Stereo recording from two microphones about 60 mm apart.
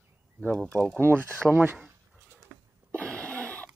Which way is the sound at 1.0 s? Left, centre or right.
Right.